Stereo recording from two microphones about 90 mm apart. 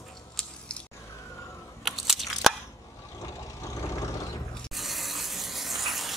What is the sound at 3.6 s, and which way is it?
Vehicle, 35° left (ahead or behind).